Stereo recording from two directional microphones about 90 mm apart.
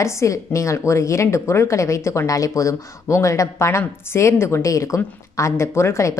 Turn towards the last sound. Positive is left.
turn(degrees=30)  # may be behind; listen again after turning